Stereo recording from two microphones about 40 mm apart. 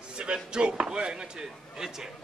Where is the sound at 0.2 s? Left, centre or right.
Right.